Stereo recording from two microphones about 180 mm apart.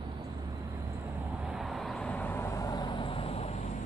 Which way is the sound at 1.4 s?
5° right (ahead or behind).